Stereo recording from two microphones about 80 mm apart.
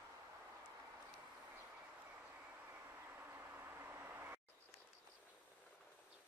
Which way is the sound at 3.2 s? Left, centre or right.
Right.